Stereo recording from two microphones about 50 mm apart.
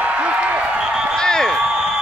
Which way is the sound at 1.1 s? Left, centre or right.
Centre.